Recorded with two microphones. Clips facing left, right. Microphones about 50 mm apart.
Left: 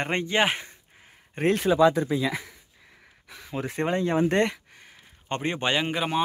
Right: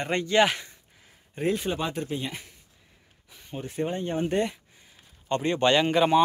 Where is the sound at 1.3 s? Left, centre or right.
Left.